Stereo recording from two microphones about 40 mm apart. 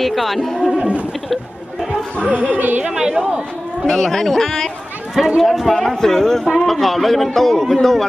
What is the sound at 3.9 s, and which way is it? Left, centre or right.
Speech, centre.